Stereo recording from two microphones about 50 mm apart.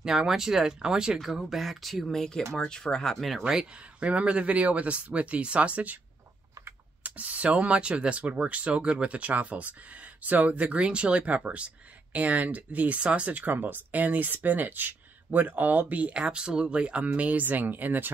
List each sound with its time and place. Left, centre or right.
0.0 s speech: centre
1.2 s speech: centre
3.2 s speech: centre
4.0 s speech: right
7.0 s speech: right